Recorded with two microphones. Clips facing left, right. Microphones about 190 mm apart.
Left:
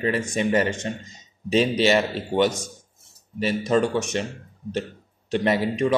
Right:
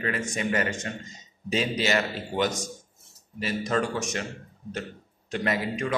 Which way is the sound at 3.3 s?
25° left (ahead or behind).